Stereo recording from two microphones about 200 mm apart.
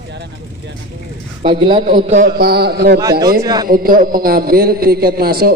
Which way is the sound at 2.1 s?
45° right (ahead or behind).